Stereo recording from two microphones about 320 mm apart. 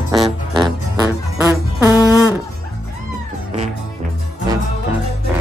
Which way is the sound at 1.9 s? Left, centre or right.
Centre.